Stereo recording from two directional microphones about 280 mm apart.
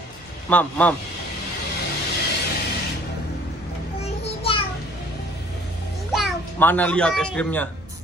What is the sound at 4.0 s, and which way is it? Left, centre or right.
Child singing, centre.